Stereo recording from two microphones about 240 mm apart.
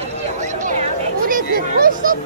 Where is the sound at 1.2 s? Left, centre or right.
Right.